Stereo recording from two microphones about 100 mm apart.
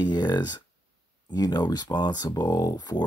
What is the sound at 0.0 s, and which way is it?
Speech, 45° left (ahead or behind).